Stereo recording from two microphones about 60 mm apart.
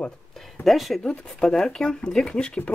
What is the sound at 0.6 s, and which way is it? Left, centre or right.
Speech, centre.